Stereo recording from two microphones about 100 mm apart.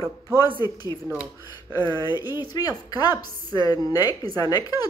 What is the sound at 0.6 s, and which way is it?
A woman's voice, 35° left (ahead or behind).